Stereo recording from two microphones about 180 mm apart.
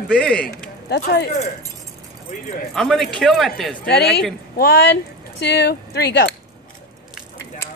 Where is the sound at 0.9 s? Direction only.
65° left (ahead or behind).